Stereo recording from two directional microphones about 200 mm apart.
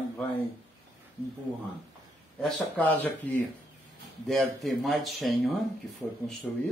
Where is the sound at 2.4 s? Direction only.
10° left (ahead or behind).